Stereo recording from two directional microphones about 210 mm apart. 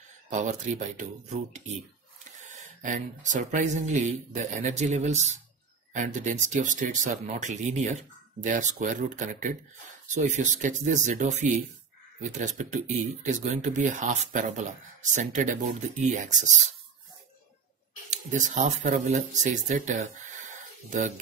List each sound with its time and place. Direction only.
0.3 s speech: 35° right (ahead or behind)
2.4 s speech: 35° right (ahead or behind)
18.1 s speech: 35° right (ahead or behind)